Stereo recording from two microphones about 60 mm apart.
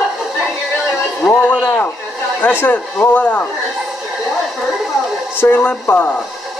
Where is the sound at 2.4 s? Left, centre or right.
Left.